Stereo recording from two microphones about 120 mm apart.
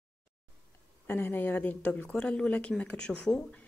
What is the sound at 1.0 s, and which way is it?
Speech, 15° left (ahead or behind).